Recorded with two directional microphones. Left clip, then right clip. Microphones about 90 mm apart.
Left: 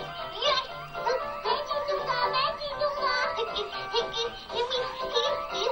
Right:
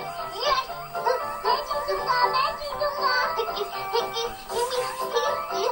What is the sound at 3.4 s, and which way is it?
Music, 40° right (ahead or behind).